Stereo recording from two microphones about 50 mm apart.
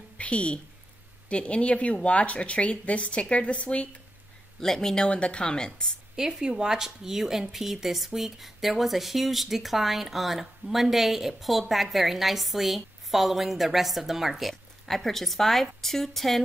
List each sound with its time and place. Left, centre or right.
0.2 s a woman's voice: left
4.6 s speech: centre
6.1 s speech: centre
14.5 s speech: centre